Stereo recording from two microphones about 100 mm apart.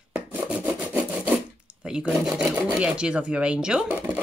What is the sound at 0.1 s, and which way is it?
Rub, 15° right (ahead or behind).